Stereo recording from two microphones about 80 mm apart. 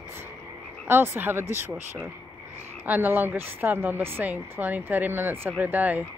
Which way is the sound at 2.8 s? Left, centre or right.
Right.